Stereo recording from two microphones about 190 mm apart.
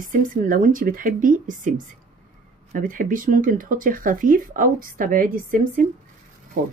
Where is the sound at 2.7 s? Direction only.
45° right (ahead or behind).